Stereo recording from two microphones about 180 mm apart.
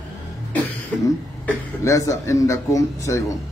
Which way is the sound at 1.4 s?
15° left (ahead or behind).